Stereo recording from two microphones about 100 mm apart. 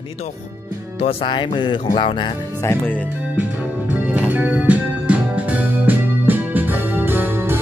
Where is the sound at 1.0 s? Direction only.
55° left (ahead or behind).